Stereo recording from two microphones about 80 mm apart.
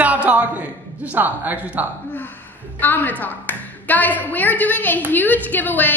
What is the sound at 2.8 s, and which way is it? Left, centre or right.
A woman's voice, left.